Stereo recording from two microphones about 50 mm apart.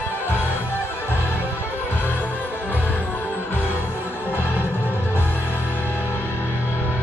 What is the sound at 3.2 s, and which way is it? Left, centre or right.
Music, left.